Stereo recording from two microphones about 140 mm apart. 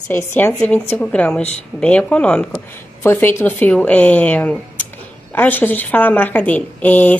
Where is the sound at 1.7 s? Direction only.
10° left (ahead or behind).